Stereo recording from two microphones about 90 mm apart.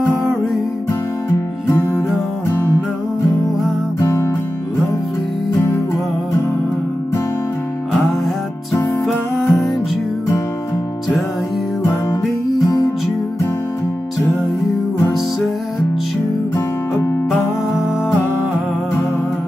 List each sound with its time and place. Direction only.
4.0 s music: 30° left (ahead or behind)
9.0 s music: centre (ahead or behind)